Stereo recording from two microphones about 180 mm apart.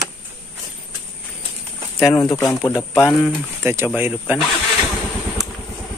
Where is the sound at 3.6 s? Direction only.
10° right (ahead or behind).